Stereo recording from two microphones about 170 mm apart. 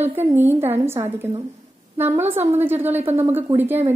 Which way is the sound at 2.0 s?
10° right (ahead or behind).